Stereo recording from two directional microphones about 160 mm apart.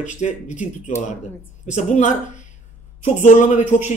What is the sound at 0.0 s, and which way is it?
Speech, 50° left (ahead or behind).